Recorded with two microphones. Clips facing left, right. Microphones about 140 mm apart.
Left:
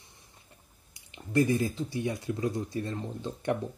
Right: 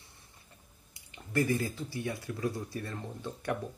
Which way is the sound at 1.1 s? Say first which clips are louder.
Left 4 dB; 20° left (ahead or behind).